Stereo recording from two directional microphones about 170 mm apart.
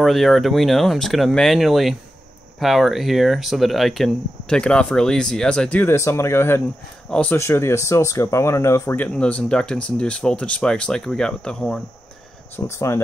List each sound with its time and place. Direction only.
0.0 s speech: centre (ahead or behind)
12.5 s speech: 15° left (ahead or behind)